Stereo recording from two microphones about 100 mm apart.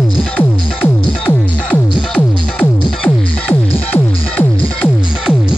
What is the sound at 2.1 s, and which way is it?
Music, 10° left (ahead or behind).